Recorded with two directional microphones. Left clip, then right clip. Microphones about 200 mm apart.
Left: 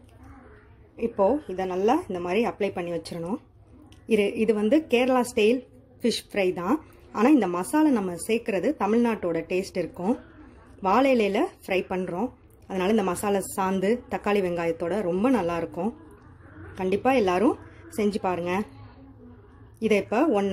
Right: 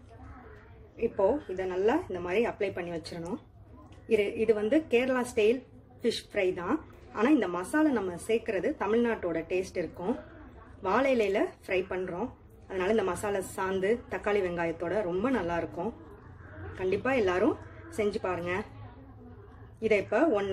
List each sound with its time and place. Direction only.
0.9 s a woman's voice: 40° left (ahead or behind)
4.1 s a woman's voice: 45° left (ahead or behind)
19.8 s a woman's voice: 45° left (ahead or behind)